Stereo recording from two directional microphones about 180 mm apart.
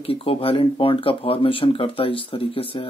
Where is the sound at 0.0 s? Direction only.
30° left (ahead or behind).